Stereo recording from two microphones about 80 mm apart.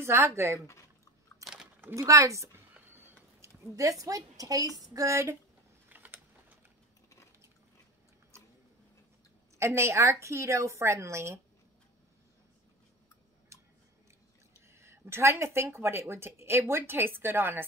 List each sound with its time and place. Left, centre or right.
0.0 s speech: right
1.4 s a sound: centre
2.0 s a woman's voice: right
5.9 s a sound: right
9.6 s speech: right
14.7 s speech: right